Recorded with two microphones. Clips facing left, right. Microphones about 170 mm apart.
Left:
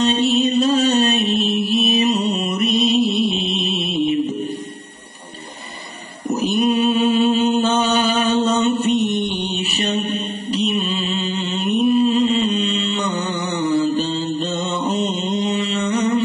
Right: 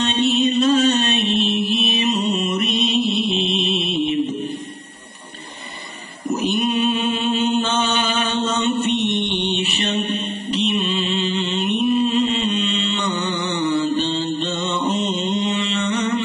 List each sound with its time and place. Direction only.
0.0 s music: 35° left (ahead or behind)
1.7 s mantra: 35° left (ahead or behind)
2.8 s music: 35° left (ahead or behind)
6.2 s mantra: 35° left (ahead or behind)